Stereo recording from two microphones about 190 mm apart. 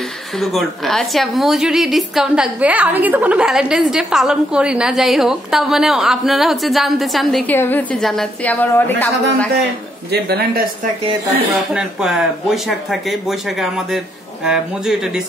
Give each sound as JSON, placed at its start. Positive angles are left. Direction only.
{"t": 0.4, "sound": "a woman's voice", "side_deg": 0}
{"t": 10.1, "sound": "speech", "side_deg": -55}
{"t": 11.3, "sound": "a woman's voice", "side_deg": -5}